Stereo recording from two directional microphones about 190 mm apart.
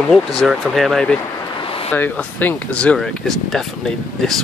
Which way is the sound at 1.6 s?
30° left (ahead or behind).